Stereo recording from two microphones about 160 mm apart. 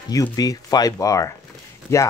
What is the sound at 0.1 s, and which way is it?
Speech, 20° left (ahead or behind).